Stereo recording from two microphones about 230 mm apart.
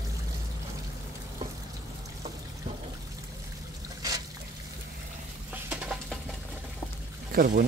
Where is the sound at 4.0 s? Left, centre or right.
Centre.